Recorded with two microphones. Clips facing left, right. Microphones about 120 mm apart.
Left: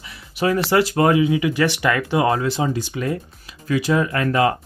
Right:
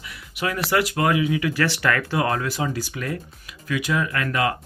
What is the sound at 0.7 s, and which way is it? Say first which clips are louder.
Speech: left 3 dB; 30° left (ahead or behind).